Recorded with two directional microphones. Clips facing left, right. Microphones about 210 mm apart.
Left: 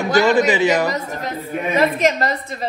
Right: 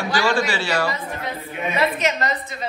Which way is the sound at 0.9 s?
45° left (ahead or behind).